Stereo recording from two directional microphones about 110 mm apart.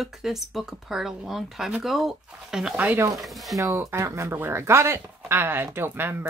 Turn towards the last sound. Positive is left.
turn(degrees=-20)  # may be behind; listen again after turning